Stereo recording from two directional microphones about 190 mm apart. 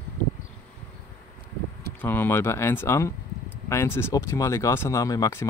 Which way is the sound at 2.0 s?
10° left (ahead or behind).